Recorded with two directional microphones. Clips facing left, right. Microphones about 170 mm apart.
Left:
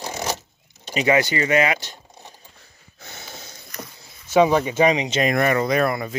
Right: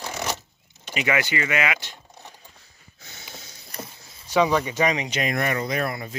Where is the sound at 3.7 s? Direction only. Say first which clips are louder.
Right 1 dB; 30° right (ahead or behind).